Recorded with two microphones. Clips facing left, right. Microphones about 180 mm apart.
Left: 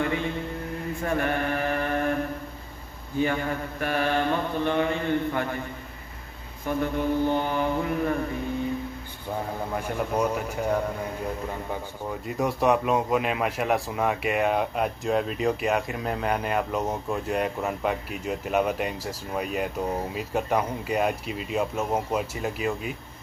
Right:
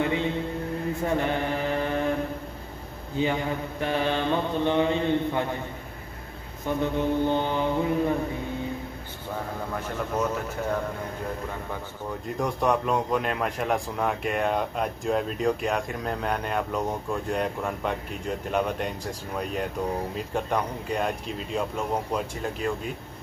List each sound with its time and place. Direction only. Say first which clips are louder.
0.0 s a man's voice: right 1 dB; 20° right (ahead or behind)
1.0 s mantra: left 1 dB; 20° right (ahead or behind)
3.2 s mantra: even; 20° right (ahead or behind)
6.8 s mantra: even; 20° right (ahead or behind)
9.8 s a man's voice: left 2 dB; 15° left (ahead or behind)
12.3 s a man's voice: left 2 dB; 5° left (ahead or behind)